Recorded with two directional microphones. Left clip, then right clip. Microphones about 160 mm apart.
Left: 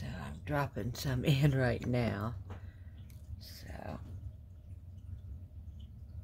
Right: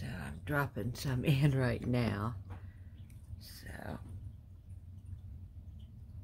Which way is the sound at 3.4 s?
10° right (ahead or behind).